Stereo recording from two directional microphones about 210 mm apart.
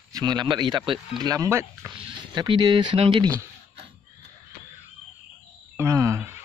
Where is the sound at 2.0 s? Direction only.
25° right (ahead or behind).